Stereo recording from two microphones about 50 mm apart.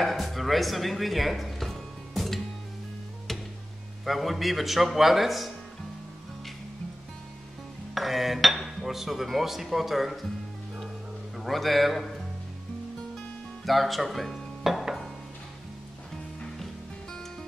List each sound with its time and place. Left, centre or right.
0.0 s speech: centre
4.0 s speech: centre
7.9 s speech: centre
11.3 s speech: centre
13.7 s music: centre